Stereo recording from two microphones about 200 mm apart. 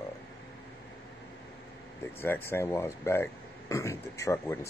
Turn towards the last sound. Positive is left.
turn(degrees=15)  # may be behind; listen again after turning